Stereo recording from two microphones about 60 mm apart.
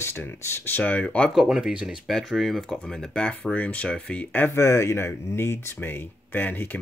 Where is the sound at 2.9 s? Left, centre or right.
Centre.